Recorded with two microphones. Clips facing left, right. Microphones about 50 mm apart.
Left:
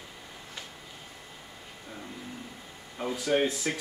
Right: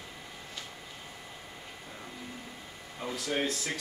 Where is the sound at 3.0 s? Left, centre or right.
Left.